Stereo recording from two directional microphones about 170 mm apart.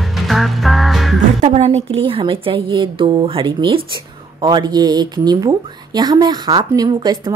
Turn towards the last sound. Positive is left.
turn(degrees=-25)  # may be behind; listen again after turning